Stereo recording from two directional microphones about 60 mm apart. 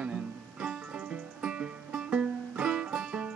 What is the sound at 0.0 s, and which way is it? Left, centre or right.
Music, centre.